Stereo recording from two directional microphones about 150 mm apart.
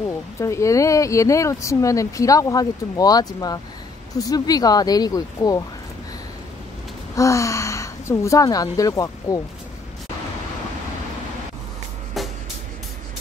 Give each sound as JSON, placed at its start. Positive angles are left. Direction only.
{"t": 0.4, "sound": "speech", "side_deg": 20}
{"t": 7.2, "sound": "speech", "side_deg": 20}